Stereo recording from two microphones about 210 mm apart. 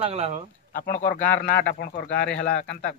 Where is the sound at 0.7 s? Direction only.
40° left (ahead or behind).